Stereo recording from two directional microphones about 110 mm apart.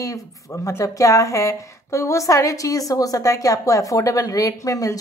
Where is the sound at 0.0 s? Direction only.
30° left (ahead or behind).